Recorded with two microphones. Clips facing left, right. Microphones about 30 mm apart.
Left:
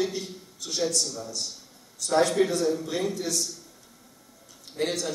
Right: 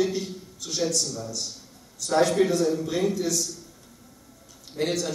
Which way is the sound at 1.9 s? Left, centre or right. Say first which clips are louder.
Right 1 dB; centre.